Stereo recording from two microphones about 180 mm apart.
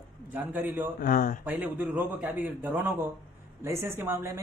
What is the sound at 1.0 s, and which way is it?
Speech, 50° left (ahead or behind).